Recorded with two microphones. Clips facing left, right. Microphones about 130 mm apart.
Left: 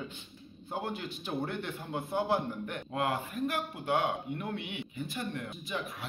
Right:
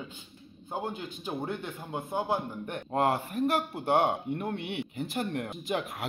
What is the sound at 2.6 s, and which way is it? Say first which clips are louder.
Speech: right 5 dB; 40° right (ahead or behind).